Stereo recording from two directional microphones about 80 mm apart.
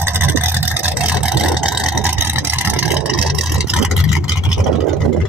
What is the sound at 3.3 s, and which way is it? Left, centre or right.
Vehicle, centre.